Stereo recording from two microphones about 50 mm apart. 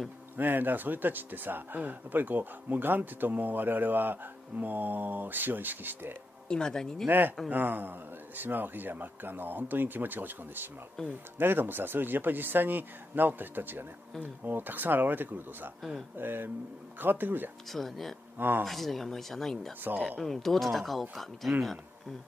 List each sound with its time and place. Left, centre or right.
0.4 s speech: right
6.5 s speech: centre
7.1 s speech: right
11.0 s speech: centre
11.3 s speech: right
17.6 s speech: centre